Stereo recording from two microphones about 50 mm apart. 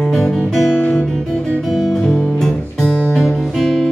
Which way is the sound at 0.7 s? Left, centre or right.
Left.